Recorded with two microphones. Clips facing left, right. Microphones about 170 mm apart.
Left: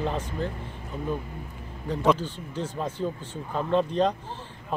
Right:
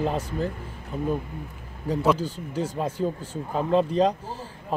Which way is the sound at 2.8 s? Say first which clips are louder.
Right 2 dB; 10° right (ahead or behind).